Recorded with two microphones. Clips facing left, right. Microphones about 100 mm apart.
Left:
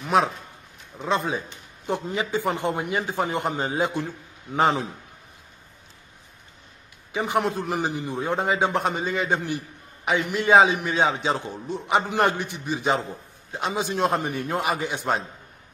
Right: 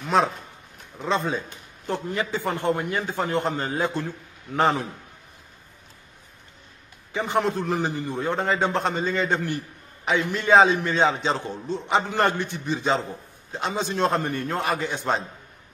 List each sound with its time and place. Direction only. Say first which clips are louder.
0.9 s a man's voice: even; 5° left (ahead or behind)
7.1 s a man's voice: even; 15° left (ahead or behind)